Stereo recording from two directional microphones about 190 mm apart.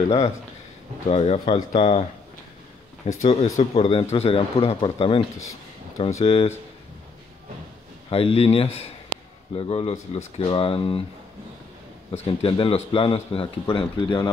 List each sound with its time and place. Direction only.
1.0 s speech: 35° left (ahead or behind)
3.1 s speech: 35° left (ahead or behind)
8.1 s a man's voice: 30° left (ahead or behind)
12.1 s a man's voice: 30° left (ahead or behind)